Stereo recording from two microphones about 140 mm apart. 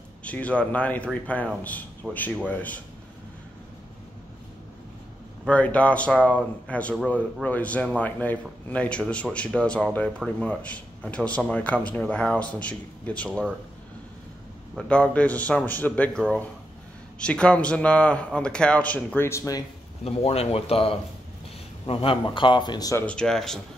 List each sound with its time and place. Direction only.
0.2 s speech: 10° left (ahead or behind)
5.5 s speech: 10° left (ahead or behind)
14.8 s speech: 5° left (ahead or behind); by 19.6 s 25° left (ahead or behind)
20.1 s a man's voice: 45° left (ahead or behind); by 23.0 s 25° left (ahead or behind)
23.0 s speech: 5° left (ahead or behind)